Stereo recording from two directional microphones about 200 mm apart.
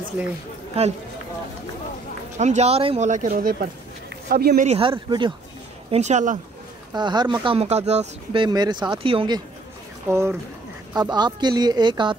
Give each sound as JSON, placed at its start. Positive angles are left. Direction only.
{"t": 0.2, "sound": "speech", "side_deg": -10}
{"t": 2.3, "sound": "speech", "side_deg": -35}
{"t": 4.6, "sound": "speech", "side_deg": -30}
{"t": 5.9, "sound": "speech", "side_deg": -35}
{"t": 6.9, "sound": "speech", "side_deg": -20}
{"t": 10.0, "sound": "speech", "side_deg": -15}